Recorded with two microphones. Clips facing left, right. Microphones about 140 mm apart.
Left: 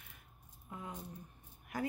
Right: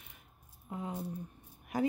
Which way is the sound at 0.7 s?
30° right (ahead or behind).